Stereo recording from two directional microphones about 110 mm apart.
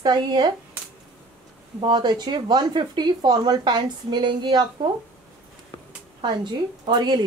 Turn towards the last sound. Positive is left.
turn(degrees=-40)  # may be behind; listen again after turning